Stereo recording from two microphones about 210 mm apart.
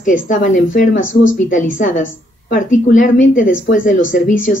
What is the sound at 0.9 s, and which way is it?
Speech, 65° left (ahead or behind).